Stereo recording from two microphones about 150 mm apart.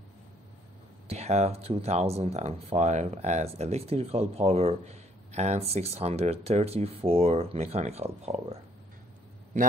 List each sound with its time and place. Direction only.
1.0 s speech: 45° right (ahead or behind)
9.5 s a man's voice: 60° right (ahead or behind)